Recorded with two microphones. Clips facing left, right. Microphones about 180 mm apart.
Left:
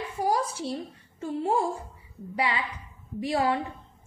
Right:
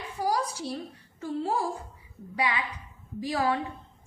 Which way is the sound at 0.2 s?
25° left (ahead or behind).